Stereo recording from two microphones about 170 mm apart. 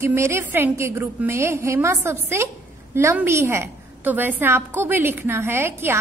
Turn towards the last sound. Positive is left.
turn(degrees=-15)  # may be behind; listen again after turning